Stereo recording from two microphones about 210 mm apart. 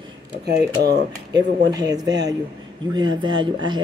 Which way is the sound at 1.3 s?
20° right (ahead or behind).